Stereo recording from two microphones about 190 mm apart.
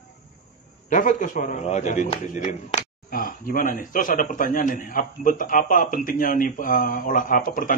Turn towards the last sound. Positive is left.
turn(degrees=45)  # may be behind; listen again after turning